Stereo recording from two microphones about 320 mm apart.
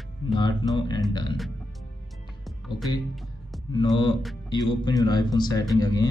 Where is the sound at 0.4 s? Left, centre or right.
Centre.